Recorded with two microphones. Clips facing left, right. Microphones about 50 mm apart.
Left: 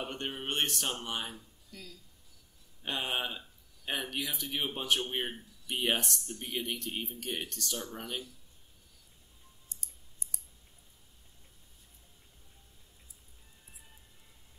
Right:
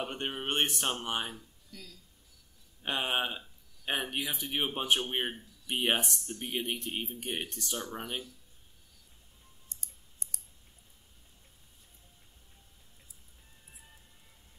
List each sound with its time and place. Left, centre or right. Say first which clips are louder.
0.0 s speech: right 2 dB; centre
1.7 s speech: left 1 dB; centre
2.8 s speech: right 3 dB; centre
9.7 s clicking: even; right